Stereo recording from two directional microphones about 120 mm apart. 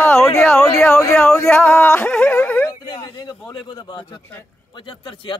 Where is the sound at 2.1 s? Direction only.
5° left (ahead or behind).